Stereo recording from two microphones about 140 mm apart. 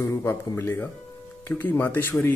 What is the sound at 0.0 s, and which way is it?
Speech, 20° left (ahead or behind).